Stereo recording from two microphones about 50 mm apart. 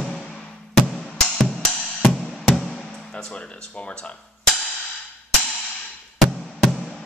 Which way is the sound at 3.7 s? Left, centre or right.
Left.